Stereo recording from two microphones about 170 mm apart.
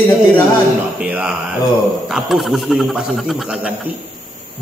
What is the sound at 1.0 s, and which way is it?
Mantra, 10° right (ahead or behind).